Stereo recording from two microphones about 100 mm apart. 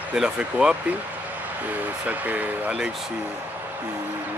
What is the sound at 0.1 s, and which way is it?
Speech, 5° right (ahead or behind).